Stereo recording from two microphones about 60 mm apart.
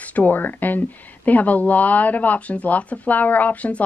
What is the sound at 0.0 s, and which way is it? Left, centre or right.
Speech, left.